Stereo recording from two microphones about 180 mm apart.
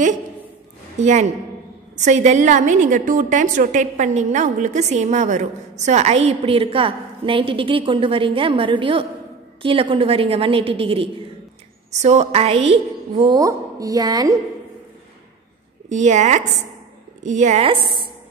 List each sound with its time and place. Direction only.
0.9 s a woman's voice: 40° right (ahead or behind)
13.4 s a woman's voice: 20° right (ahead or behind)
15.9 s a woman's voice: 40° right (ahead or behind)